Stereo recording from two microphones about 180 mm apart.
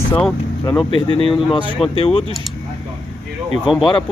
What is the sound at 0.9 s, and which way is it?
A man's voice, 30° left (ahead or behind).